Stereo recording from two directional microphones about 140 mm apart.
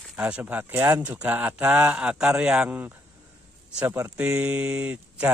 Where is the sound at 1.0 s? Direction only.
10° right (ahead or behind).